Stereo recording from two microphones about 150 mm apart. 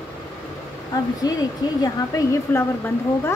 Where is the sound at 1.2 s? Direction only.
25° left (ahead or behind).